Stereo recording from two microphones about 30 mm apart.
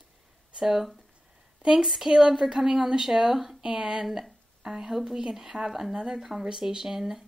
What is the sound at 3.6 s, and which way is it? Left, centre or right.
Speech, right.